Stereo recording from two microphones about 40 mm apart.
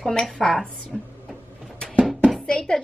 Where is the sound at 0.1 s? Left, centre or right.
Centre.